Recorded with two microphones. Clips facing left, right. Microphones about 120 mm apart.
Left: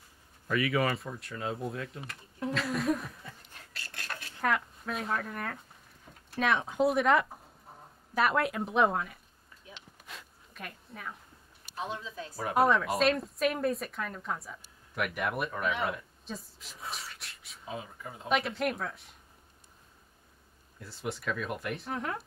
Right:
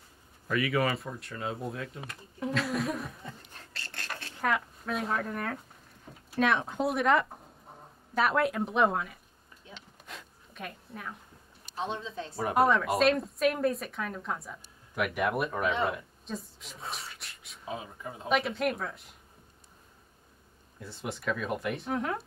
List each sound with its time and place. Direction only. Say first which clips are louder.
0.5 s speech: even; centre (ahead or behind)
3.5 s a sound: right 2 dB; 30° right (ahead or behind)
4.4 s speech: even; centre (ahead or behind)
10.0 s a sound: right 1 dB; centre (ahead or behind)
11.7 s speech: right 3 dB; 25° right (ahead or behind)
12.4 s a woman's voice: right 1 dB; centre (ahead or behind)
16.9 s a sound: right 1 dB; centre (ahead or behind)
18.0 s speech: right 3 dB; 15° right (ahead or behind)
18.3 s speech: right 1 dB; centre (ahead or behind)
20.8 s speech: right 1 dB; centre (ahead or behind)